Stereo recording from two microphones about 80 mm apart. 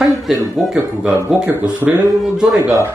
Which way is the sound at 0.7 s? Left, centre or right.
Centre.